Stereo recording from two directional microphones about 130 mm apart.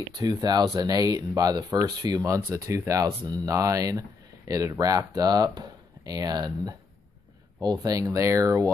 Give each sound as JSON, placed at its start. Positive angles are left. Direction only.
{"t": 0.2, "sound": "speech", "side_deg": -30}